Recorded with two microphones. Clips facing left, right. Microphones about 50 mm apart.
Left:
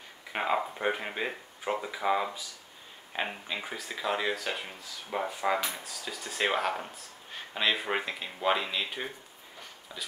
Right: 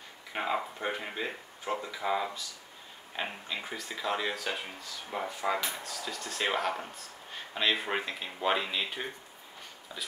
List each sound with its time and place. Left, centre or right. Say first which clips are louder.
0.3 s speech: left 3 dB; centre